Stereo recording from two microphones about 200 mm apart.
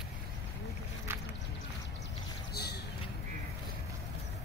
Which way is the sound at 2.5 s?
55° left (ahead or behind).